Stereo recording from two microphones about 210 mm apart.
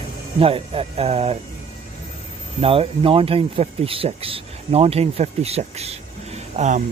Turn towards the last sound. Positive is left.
turn(degrees=-35)  # may be behind; listen again after turning